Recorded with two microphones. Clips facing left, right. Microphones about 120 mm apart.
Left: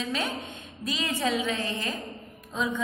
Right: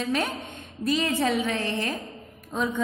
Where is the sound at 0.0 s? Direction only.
55° right (ahead or behind).